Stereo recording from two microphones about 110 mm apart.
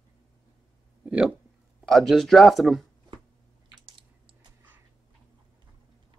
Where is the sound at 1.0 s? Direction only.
10° right (ahead or behind).